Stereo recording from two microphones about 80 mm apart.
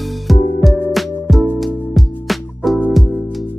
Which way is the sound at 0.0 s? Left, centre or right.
Centre.